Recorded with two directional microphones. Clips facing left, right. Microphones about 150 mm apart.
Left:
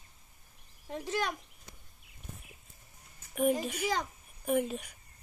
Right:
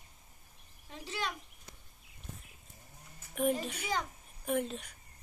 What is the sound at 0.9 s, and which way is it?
Speech, 50° left (ahead or behind).